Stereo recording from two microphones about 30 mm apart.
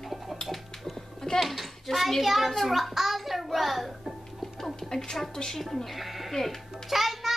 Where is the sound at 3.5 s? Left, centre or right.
Centre.